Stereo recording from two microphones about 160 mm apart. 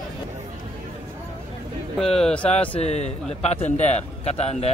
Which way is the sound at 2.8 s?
45° left (ahead or behind).